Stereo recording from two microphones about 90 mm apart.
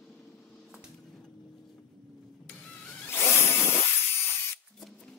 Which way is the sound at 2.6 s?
15° left (ahead or behind).